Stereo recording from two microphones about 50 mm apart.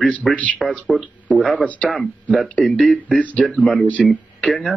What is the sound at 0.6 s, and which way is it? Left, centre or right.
Speech, centre.